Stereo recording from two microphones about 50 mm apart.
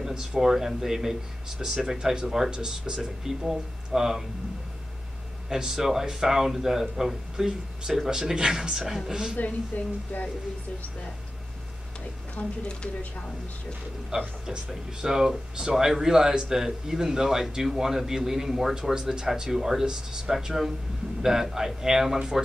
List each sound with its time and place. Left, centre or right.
0.0 s a sound: centre
0.4 s speech: centre
5.5 s speech: centre
9.4 s speech: left
12.4 s speech: left
14.4 s speech: centre